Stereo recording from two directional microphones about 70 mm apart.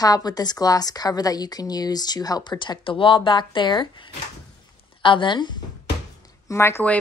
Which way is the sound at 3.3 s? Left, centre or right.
Left.